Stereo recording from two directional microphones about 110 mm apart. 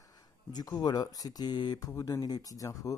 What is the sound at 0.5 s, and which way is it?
Speech, 35° left (ahead or behind).